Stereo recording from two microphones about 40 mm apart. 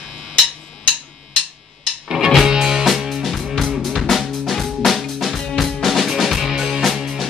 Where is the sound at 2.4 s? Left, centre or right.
Centre.